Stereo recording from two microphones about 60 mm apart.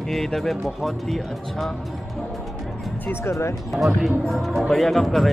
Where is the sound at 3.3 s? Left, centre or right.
Left.